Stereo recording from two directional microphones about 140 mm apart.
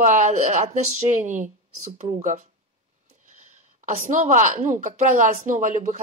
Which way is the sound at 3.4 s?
60° right (ahead or behind).